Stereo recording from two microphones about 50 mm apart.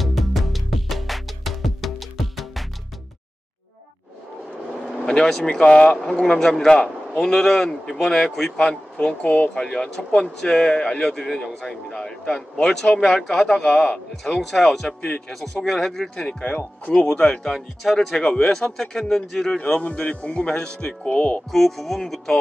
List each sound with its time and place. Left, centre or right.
0.0 s music: centre
5.0 s speech: centre
9.5 s speech: centre
14.4 s music: centre
15.0 s speech: centre
16.4 s speech: left
16.9 s speech: left
19.0 s music: centre
19.6 s speech: left
21.1 s speech: left
21.5 s music: centre